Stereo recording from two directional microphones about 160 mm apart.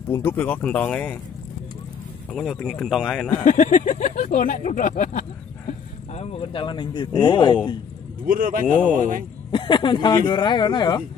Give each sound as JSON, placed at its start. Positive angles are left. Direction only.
{"t": 0.1, "sound": "speech", "side_deg": 15}
{"t": 2.3, "sound": "speech", "side_deg": 0}
{"t": 3.4, "sound": "speech", "side_deg": 50}
{"t": 5.7, "sound": "a man's voice", "side_deg": 40}
{"t": 8.3, "sound": "a man's voice", "side_deg": -60}
{"t": 9.5, "sound": "speech", "side_deg": 30}